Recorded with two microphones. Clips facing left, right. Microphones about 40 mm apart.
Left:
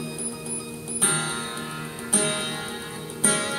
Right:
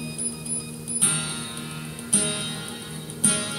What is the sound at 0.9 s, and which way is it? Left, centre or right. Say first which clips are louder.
Music: left 4 dB; left.